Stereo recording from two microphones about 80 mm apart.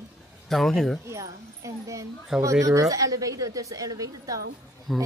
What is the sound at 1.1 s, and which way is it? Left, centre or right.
Speech, right.